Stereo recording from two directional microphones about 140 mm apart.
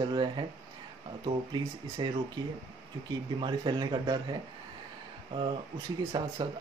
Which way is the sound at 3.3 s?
35° right (ahead or behind).